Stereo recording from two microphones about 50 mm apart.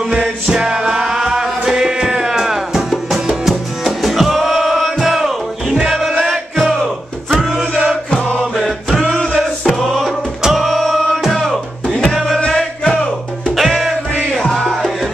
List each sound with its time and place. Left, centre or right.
0.1 s music: centre
6.6 s battle cry: centre
7.7 s music: centre
8.4 s music: centre
9.0 s music: centre
12.4 s music: centre
13.6 s music: centre
14.5 s music: centre